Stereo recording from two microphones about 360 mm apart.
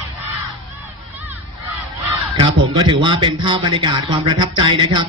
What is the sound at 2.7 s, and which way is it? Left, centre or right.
Speech, centre.